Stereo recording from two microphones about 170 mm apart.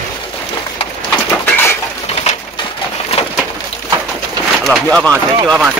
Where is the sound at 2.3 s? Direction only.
40° left (ahead or behind).